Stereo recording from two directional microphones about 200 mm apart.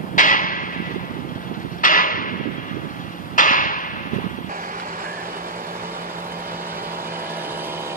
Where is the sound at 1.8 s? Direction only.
45° left (ahead or behind).